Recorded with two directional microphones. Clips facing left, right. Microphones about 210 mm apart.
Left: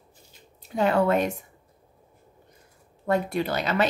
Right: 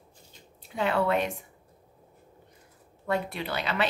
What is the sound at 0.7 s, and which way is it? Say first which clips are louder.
Speech: left 4 dB; 40° left (ahead or behind).